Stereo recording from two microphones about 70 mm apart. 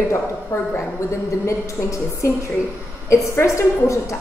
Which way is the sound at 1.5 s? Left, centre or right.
Left.